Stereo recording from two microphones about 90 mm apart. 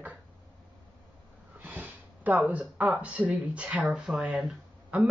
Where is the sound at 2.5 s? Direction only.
15° right (ahead or behind).